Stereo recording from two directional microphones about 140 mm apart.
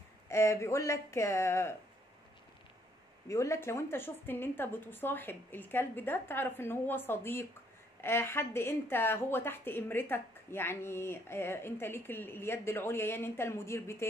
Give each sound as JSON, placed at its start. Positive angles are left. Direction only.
{"t": 0.3, "sound": "speech", "side_deg": 20}
{"t": 3.3, "sound": "a woman's voice", "side_deg": 20}